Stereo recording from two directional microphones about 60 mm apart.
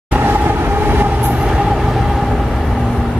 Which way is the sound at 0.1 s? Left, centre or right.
Right.